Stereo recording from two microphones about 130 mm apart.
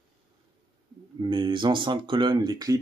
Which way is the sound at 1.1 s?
40° right (ahead or behind).